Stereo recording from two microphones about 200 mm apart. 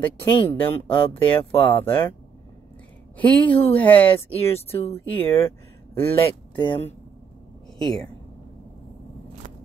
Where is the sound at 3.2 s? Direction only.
5° left (ahead or behind).